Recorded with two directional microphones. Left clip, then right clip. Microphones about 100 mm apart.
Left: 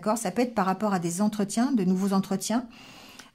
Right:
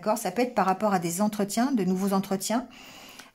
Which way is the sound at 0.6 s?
10° left (ahead or behind).